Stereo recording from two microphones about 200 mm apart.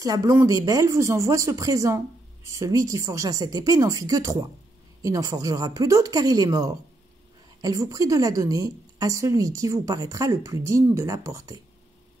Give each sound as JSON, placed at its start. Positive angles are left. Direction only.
{"t": 0.0, "sound": "speech", "side_deg": -15}